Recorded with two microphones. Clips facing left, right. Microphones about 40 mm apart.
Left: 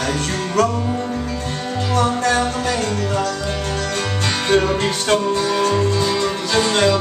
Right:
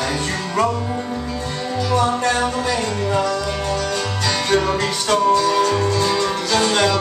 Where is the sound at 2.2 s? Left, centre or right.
Right.